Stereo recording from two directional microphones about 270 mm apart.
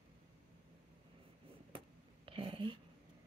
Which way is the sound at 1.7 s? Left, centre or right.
Centre.